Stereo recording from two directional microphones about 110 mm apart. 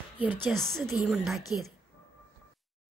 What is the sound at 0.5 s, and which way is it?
Speech, 5° left (ahead or behind).